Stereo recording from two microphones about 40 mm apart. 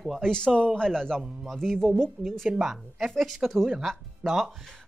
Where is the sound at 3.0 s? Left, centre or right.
Centre.